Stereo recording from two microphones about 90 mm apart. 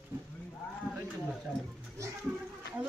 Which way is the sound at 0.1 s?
25° right (ahead or behind).